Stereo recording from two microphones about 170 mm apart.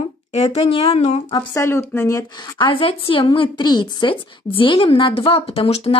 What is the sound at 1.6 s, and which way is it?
A woman's voice, 15° left (ahead or behind).